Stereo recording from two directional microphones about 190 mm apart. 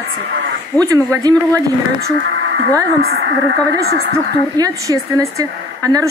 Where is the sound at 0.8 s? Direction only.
20° right (ahead or behind).